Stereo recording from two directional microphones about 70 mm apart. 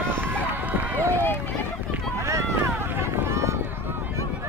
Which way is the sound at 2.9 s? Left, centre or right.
Right.